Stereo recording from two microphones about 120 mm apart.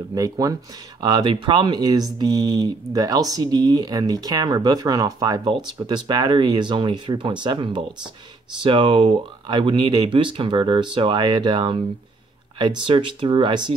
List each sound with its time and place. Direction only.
0.1 s speech: 30° right (ahead or behind)